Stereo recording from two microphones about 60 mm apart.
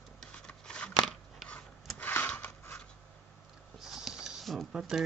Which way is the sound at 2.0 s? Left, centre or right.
Left.